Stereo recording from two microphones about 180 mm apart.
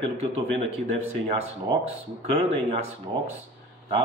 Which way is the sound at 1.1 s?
40° right (ahead or behind).